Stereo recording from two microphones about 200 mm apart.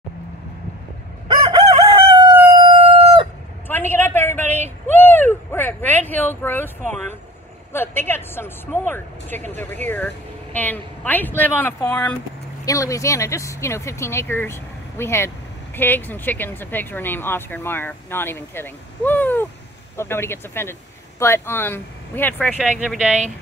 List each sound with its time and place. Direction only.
1.3 s crowing: 25° right (ahead or behind)
3.6 s a sound: 10° left (ahead or behind)
7.7 s speech: 10° left (ahead or behind)
22.6 s speech: centre (ahead or behind)